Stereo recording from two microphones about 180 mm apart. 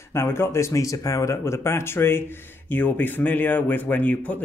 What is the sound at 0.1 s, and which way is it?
Speech, 15° left (ahead or behind).